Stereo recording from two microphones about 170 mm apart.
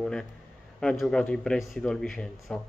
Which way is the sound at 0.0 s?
Centre (ahead or behind).